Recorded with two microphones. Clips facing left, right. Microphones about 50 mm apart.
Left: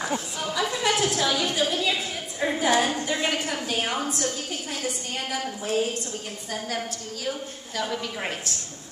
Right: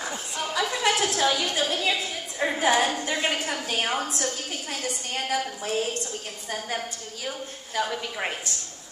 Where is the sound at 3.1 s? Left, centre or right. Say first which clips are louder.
Even; centre.